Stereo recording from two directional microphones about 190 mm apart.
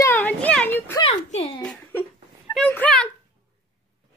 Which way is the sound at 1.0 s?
30° left (ahead or behind).